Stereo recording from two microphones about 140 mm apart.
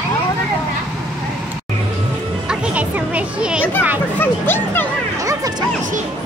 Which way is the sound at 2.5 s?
10° right (ahead or behind).